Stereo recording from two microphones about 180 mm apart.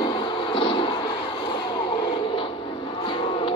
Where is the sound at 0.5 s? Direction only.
30° left (ahead or behind).